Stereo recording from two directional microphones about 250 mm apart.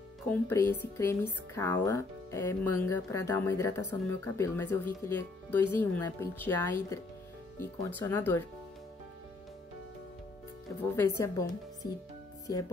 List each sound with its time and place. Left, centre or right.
0.3 s speech: centre
10.8 s speech: centre